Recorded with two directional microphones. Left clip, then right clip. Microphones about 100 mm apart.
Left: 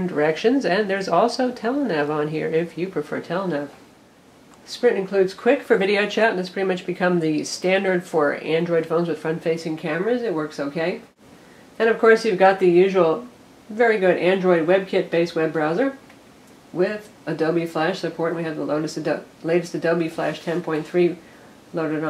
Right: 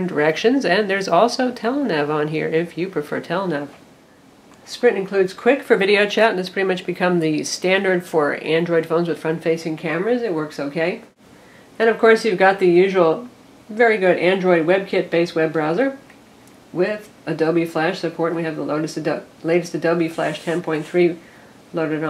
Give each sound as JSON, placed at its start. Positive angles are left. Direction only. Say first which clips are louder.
{"t": 0.0, "sound": "speech", "louder": "right 2 dB", "side_deg": -25}
{"t": 4.7, "sound": "speech", "louder": "right 2 dB", "side_deg": -15}